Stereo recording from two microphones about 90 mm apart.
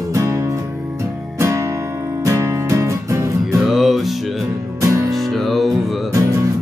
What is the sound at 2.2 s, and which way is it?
Music, 35° right (ahead or behind).